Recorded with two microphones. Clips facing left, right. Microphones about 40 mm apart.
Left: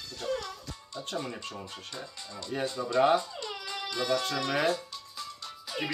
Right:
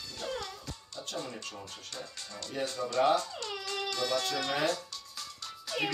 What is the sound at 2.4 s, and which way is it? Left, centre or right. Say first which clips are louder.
Speech: left 2 dB; left.